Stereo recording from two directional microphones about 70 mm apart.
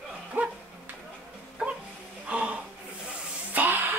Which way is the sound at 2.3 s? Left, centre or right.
Centre.